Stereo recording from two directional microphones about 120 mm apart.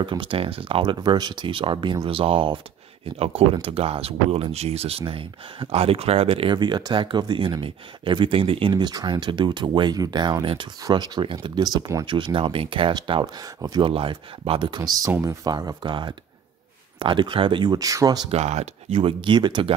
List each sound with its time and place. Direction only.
0.0 s speech: 45° right (ahead or behind)
3.6 s speech: 55° right (ahead or behind)
14.8 s speech: 30° right (ahead or behind)
18.3 s speech: 65° right (ahead or behind); by 19.7 s 40° right (ahead or behind)